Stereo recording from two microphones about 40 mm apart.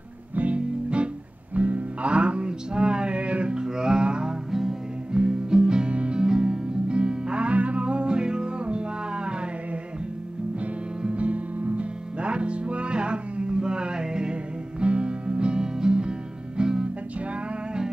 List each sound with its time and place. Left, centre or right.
0.4 s music: right
4.5 s music: centre
5.1 s music: right
11.0 s music: right